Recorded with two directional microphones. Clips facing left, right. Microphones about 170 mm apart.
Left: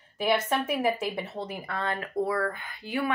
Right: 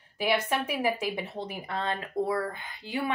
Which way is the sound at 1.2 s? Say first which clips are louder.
Left 1 dB; 15° right (ahead or behind).